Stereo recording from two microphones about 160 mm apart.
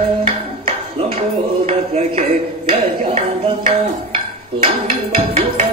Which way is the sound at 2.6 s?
45° right (ahead or behind).